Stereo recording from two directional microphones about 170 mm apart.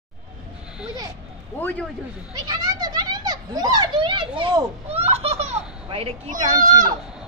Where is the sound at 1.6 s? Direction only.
10° left (ahead or behind).